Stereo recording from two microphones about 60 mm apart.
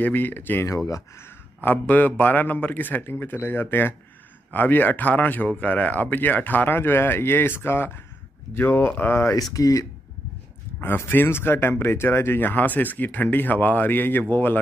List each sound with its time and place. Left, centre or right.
0.0 s speech: left
0.7 s speech: left
1.6 s speech: left
9.3 s speech: left
11.1 s speech: left